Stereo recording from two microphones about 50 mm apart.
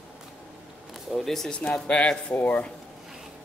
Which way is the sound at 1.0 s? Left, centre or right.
Centre.